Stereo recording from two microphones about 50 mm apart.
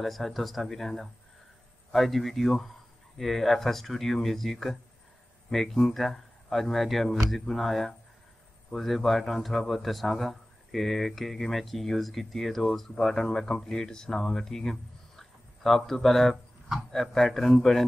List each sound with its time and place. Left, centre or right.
0.0 s a man's voice: centre